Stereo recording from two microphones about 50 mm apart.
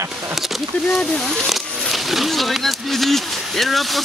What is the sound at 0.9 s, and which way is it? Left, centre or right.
Speech, centre.